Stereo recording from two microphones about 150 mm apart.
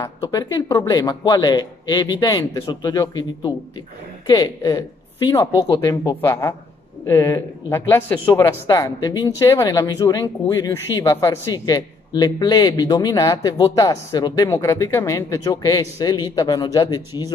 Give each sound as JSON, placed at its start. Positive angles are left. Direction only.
{"t": 0.0, "sound": "a man's voice", "side_deg": 25}